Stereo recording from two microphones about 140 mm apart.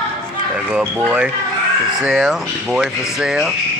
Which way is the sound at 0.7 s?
5° right (ahead or behind).